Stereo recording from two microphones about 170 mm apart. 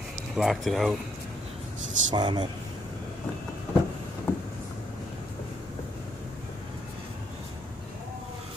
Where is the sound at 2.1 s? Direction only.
25° right (ahead or behind).